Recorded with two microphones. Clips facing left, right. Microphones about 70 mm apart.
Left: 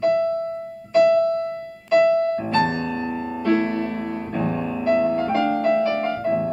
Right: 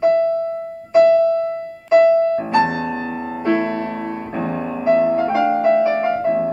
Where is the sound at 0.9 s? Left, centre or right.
Right.